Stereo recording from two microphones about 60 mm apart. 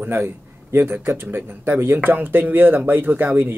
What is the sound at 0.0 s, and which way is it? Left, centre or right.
A man's voice, right.